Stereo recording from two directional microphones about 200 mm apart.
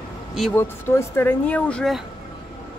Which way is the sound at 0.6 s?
10° left (ahead or behind).